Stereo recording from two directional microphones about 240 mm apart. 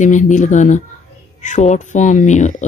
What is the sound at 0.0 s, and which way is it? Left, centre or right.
Speech, left.